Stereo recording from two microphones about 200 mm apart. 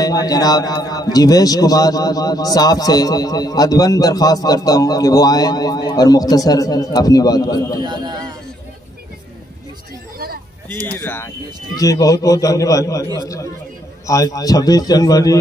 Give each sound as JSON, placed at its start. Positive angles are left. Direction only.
{"t": 0.0, "sound": "a man's voice", "side_deg": 20}
{"t": 7.8, "sound": "a man's voice", "side_deg": -20}
{"t": 10.1, "sound": "a sound", "side_deg": -50}
{"t": 10.9, "sound": "a man's voice", "side_deg": 10}